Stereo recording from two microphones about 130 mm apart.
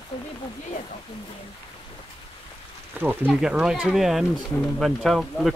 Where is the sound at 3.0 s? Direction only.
15° right (ahead or behind).